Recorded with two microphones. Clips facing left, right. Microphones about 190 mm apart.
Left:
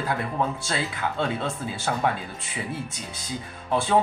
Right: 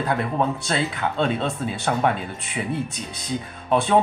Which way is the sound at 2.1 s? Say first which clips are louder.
Right 5 dB; 20° right (ahead or behind).